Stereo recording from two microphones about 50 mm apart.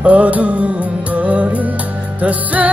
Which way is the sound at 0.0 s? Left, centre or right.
Right.